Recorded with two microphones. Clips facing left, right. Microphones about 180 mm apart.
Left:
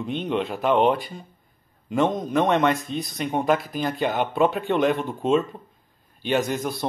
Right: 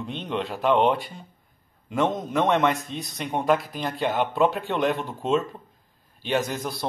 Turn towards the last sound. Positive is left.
turn(degrees=0)  # may be behind; listen again after turning